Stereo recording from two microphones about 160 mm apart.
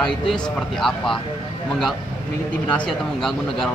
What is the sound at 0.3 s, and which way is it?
Speech, centre (ahead or behind).